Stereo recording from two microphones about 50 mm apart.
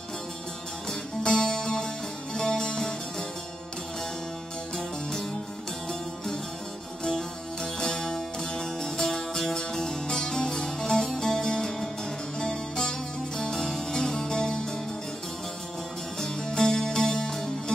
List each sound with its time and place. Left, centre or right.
0.8 s music: centre
5.9 s music: centre
16.2 s music: centre